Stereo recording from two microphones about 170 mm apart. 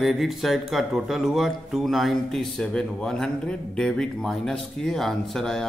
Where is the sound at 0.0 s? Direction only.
Centre (ahead or behind).